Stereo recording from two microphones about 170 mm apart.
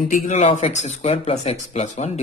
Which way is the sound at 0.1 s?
40° left (ahead or behind).